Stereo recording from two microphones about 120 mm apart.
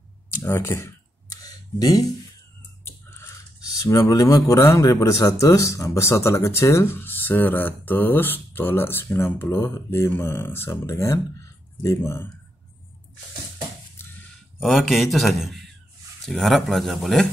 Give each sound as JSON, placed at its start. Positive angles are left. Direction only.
{"t": 0.4, "sound": "a man's voice", "side_deg": 20}
{"t": 1.3, "sound": "a sound", "side_deg": 30}
{"t": 3.7, "sound": "a man's voice", "side_deg": 25}
{"t": 14.6, "sound": "a man's voice", "side_deg": 0}